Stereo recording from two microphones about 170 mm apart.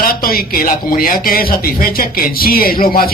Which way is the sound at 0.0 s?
60° left (ahead or behind).